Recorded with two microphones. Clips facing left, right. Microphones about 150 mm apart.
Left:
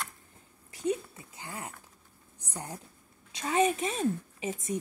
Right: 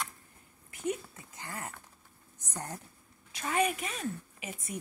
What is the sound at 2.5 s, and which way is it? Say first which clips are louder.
Speech: even; 15° left (ahead or behind).